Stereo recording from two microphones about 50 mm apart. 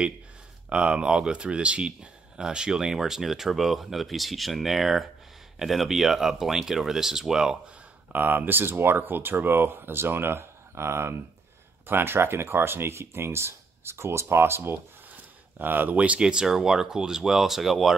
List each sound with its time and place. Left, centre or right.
0.7 s speech: centre
8.1 s speech: right
16.0 s speech: right; by 17.9 s centre